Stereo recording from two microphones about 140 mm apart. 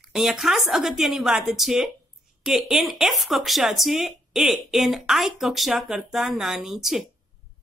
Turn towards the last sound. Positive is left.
turn(degrees=0)  # may be behind; listen again after turning